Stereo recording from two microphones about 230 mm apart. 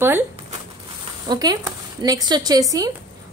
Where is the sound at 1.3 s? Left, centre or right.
Centre.